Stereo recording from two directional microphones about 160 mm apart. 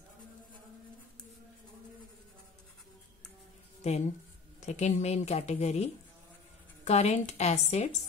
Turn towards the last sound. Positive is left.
turn(degrees=45)  # may be behind; listen again after turning